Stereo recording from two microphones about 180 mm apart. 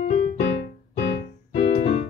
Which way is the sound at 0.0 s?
40° left (ahead or behind).